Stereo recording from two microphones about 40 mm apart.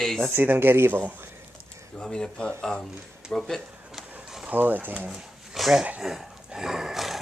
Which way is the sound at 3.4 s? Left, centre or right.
Centre.